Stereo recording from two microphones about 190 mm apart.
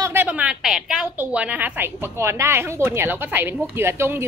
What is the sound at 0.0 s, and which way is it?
A woman's voice, 10° right (ahead or behind).